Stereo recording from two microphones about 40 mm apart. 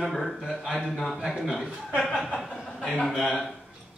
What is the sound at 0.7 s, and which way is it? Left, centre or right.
Speech, centre.